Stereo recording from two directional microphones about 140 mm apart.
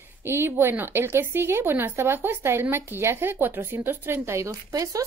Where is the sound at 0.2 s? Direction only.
15° right (ahead or behind).